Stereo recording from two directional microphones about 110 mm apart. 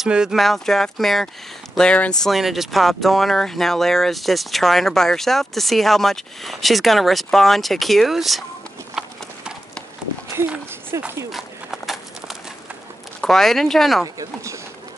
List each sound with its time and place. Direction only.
0.0 s speech: 5° right (ahead or behind)
10.5 s speech: 15° right (ahead or behind)
11.3 s horse: centre (ahead or behind)
13.2 s speech: 5° left (ahead or behind)
14.0 s speech: 30° right (ahead or behind)